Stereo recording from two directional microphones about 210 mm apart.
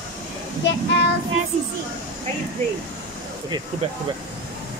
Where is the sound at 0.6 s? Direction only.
55° left (ahead or behind).